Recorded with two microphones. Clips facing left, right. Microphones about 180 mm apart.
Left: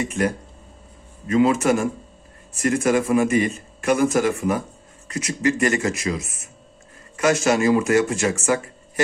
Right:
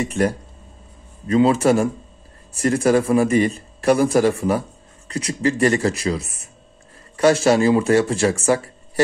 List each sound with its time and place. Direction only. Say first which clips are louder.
0.1 s speech: right 3 dB; 35° right (ahead or behind)